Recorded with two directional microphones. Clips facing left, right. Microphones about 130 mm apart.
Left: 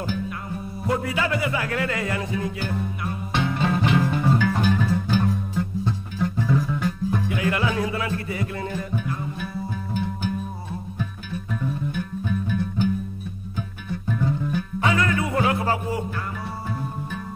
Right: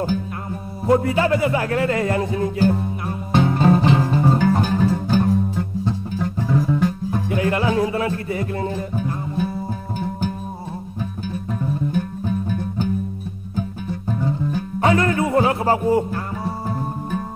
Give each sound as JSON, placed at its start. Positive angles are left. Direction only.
{"t": 0.8, "sound": "music", "side_deg": -35}
{"t": 6.7, "sound": "speech", "side_deg": -35}
{"t": 11.9, "sound": "music", "side_deg": -40}
{"t": 14.8, "sound": "music", "side_deg": -40}